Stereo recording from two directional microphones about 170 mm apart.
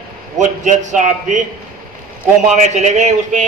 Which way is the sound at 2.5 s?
45° right (ahead or behind).